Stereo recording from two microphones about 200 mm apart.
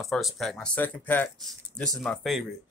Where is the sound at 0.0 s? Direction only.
Centre (ahead or behind).